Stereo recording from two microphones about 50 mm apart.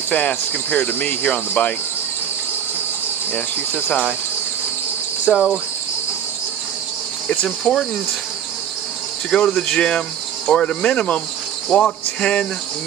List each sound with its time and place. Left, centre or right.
0.1 s cricket: left
5.3 s speech: centre
7.2 s speech: centre
9.3 s cricket: left
9.7 s speech: centre